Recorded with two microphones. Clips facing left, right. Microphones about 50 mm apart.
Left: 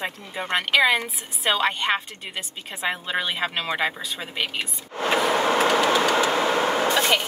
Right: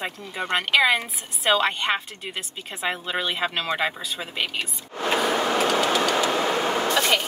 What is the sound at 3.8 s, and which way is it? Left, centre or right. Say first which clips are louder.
Speech: even; centre.